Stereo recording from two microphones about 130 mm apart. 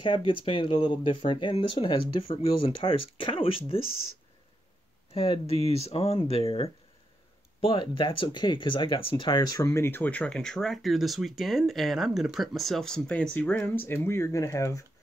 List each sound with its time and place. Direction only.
0.0 s speech: 40° left (ahead or behind)
5.1 s speech: 45° left (ahead or behind); by 14.9 s 25° left (ahead or behind)